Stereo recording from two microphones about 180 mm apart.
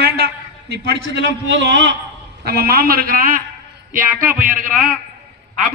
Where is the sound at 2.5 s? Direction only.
60° right (ahead or behind).